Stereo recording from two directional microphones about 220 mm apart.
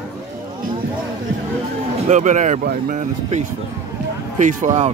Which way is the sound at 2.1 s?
35° right (ahead or behind).